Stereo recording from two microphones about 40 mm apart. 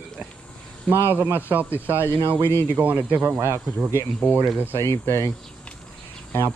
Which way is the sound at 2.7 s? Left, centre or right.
Right.